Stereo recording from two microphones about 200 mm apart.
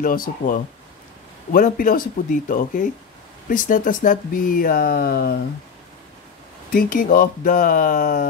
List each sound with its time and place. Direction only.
0.0 s speech: 45° left (ahead or behind)
6.7 s speech: 45° left (ahead or behind)